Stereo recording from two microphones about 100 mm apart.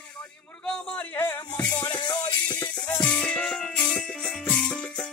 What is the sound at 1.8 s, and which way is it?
Music, 45° left (ahead or behind).